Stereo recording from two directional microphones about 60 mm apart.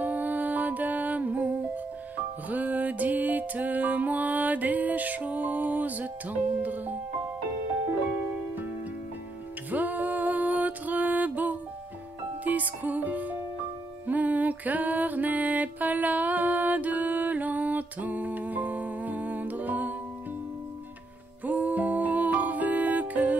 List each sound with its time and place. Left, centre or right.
0.0 s music: right
2.5 s music: right
9.7 s music: right
21.5 s music: right